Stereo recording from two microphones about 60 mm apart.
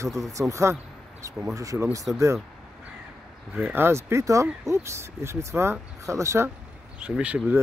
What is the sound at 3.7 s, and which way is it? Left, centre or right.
Speech, right.